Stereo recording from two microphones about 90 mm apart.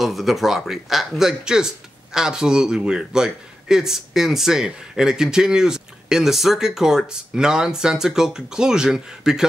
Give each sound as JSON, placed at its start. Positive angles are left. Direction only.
{"t": 0.0, "sound": "a man's voice", "side_deg": 0}